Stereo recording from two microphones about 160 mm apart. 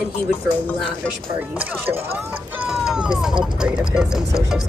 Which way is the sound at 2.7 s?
5° right (ahead or behind).